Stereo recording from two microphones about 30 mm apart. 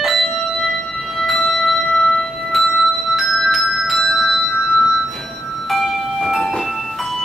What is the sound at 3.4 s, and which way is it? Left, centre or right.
Music, centre.